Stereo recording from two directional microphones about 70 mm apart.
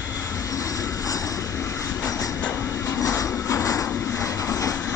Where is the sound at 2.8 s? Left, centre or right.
Left.